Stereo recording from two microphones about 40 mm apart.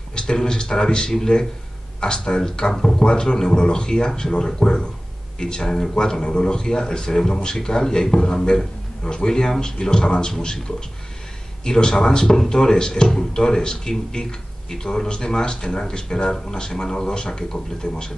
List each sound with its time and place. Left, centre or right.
0.1 s speech: centre
11.6 s speech: centre